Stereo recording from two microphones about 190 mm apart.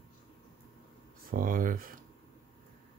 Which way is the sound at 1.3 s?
45° right (ahead or behind).